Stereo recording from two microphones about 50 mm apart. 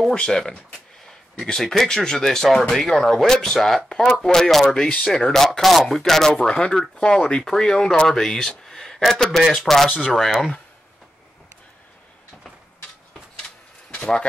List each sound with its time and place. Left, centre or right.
0.1 s speech: centre
13.9 s speech: left